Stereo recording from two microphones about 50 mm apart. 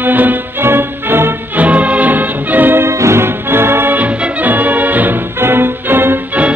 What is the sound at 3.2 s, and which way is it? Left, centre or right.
Music, right.